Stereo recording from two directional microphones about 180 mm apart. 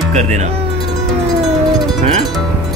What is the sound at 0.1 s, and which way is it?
Speech, 40° right (ahead or behind).